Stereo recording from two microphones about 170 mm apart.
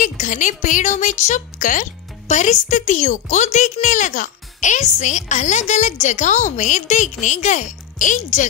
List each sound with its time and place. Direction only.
0.0 s speech: 50° left (ahead or behind)